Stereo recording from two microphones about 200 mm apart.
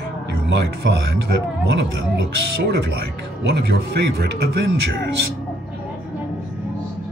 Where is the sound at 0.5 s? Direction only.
60° right (ahead or behind).